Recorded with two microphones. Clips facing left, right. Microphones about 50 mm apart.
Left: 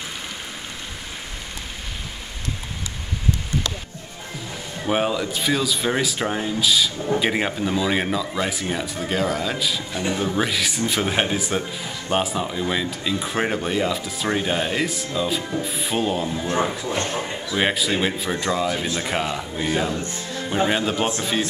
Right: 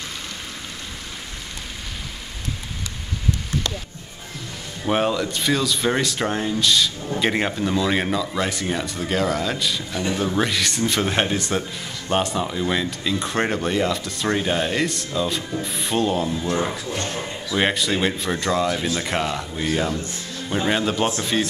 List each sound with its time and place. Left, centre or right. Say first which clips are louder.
4.8 s speech: right 1 dB; centre
16.9 s a man's voice: left 2 dB; left
17.6 s speech: right 1 dB; centre